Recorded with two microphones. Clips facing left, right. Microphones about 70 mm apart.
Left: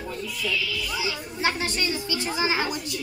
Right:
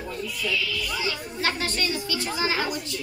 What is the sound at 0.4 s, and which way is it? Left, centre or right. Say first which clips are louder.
Speech: even; centre.